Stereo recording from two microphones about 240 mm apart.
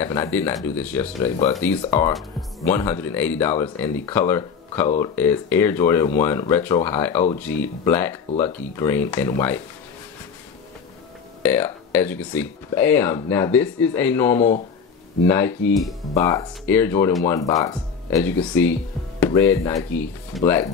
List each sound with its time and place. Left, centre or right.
0.0 s speech: centre
11.4 s speech: centre
14.3 s speech: left
15.2 s speech: centre